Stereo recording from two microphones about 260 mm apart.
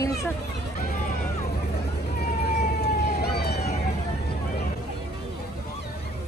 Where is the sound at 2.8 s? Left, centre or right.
Left.